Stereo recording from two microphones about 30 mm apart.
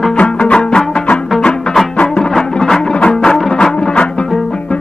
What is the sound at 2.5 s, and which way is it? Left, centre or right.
Music, left.